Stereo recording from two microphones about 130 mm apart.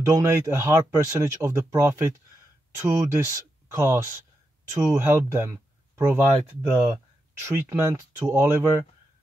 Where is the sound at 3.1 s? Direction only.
25° right (ahead or behind).